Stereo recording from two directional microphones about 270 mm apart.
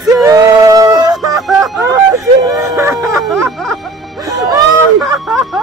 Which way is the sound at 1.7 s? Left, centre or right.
Centre.